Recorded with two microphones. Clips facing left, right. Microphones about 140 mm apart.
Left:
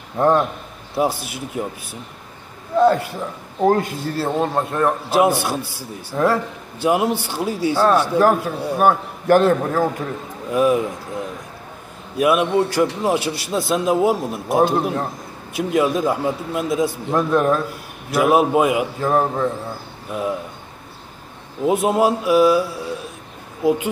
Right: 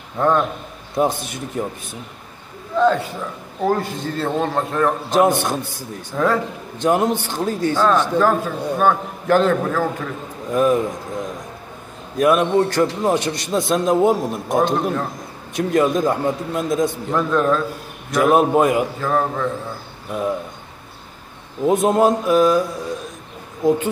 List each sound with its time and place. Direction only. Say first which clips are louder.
0.2 s a man's voice: left 1 dB; 20° left (ahead or behind)
0.9 s a man's voice: right 1 dB; 5° left (ahead or behind)
2.8 s a woman's voice: left 1 dB; 10° left (ahead or behind)
12.2 s a man's voice: right 1 dB; 10° left (ahead or behind)
18.9 s a man's voice: left 2 dB; 15° left (ahead or behind)
20.1 s speech: right 1 dB; 5° left (ahead or behind)
21.6 s a man's voice: right 2 dB; 5° left (ahead or behind)